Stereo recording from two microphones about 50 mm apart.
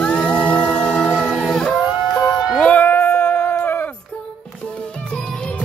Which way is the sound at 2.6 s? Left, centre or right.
Left.